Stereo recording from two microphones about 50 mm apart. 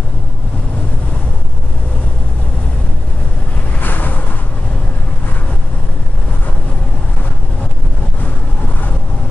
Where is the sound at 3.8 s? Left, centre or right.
Left.